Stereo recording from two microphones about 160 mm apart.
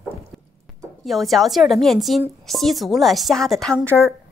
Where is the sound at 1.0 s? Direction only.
Centre (ahead or behind).